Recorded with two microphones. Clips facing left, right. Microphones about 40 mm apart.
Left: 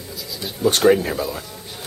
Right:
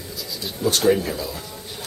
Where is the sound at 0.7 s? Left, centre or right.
Left.